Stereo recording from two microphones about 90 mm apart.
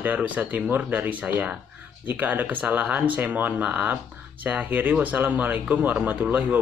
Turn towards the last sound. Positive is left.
turn(degrees=-20)  # may be behind; listen again after turning